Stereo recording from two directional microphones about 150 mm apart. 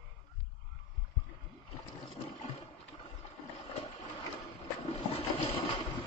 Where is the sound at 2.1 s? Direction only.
35° left (ahead or behind).